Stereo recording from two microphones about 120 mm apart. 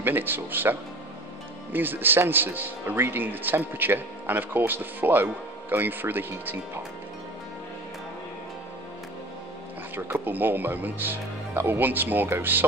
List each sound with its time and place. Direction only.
0.0 s a man's voice: 15° right (ahead or behind)
9.9 s a man's voice: 20° right (ahead or behind)